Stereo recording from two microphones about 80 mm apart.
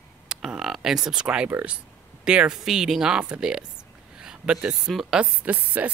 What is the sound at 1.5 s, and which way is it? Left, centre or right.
A woman's voice, centre.